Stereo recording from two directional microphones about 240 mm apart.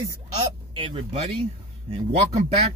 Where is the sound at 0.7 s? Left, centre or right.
Right.